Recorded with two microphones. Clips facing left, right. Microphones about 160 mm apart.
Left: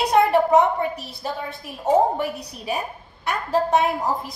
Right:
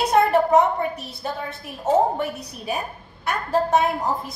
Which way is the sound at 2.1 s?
Centre (ahead or behind).